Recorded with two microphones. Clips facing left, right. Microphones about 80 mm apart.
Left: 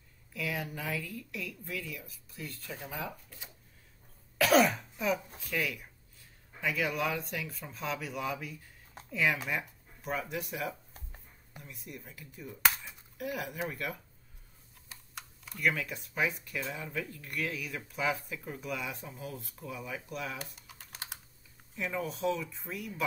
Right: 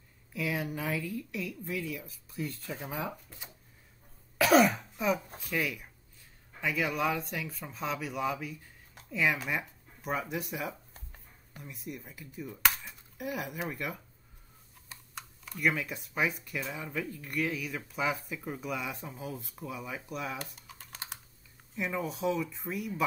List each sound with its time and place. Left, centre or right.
0.3 s speech: centre
4.4 s cough: centre
5.4 s speech: centre
9.5 s a sound: centre
10.3 s speech: centre
10.9 s a sound: centre
11.6 s speech: centre
14.9 s computer keyboard: centre
15.6 s speech: centre
20.6 s typing: centre
21.7 s speech: centre